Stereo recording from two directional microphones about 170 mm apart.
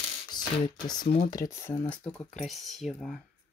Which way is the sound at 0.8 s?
25° left (ahead or behind).